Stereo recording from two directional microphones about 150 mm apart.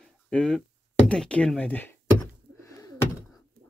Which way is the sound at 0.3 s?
5° left (ahead or behind).